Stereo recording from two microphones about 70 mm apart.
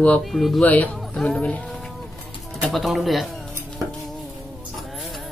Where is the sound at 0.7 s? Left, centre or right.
Left.